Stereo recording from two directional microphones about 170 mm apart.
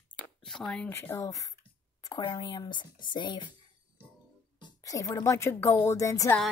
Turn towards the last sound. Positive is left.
turn(degrees=20)  # may be behind; listen again after turning